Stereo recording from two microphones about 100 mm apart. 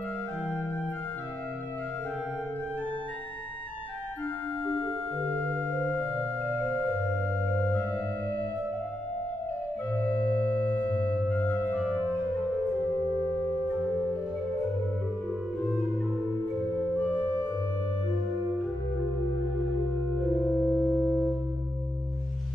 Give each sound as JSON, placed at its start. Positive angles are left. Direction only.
{"t": 5.4, "sound": "music", "side_deg": 20}
{"t": 9.9, "sound": "organ", "side_deg": 20}
{"t": 20.4, "sound": "music", "side_deg": 5}